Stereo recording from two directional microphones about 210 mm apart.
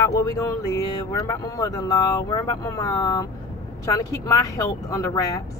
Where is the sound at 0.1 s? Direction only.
15° left (ahead or behind).